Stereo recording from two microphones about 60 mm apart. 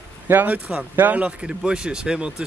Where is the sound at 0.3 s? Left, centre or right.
Right.